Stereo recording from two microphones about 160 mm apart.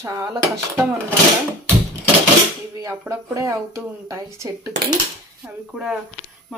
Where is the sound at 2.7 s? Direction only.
15° right (ahead or behind).